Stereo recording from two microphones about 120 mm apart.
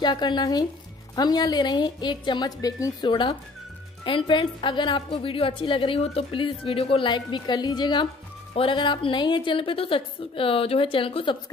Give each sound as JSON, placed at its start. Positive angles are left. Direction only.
{"t": 0.0, "sound": "a woman's voice", "side_deg": 35}